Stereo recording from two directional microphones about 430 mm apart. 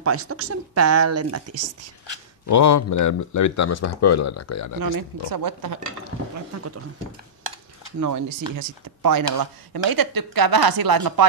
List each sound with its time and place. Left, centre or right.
0.0 s speech: right
2.4 s speech: left
4.9 s speech: right
6.3 s speech: right
8.0 s speech: right